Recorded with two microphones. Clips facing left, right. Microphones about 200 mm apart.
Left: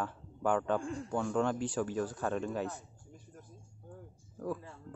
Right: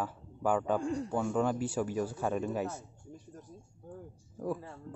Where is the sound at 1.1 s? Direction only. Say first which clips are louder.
Even; 5° right (ahead or behind).